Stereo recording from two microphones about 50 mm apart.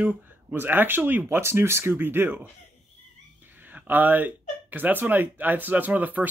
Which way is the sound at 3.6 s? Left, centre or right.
Right.